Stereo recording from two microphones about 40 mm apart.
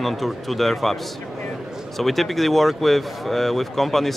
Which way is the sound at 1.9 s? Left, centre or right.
Centre.